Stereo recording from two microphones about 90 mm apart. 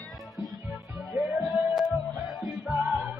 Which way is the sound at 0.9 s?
Centre (ahead or behind).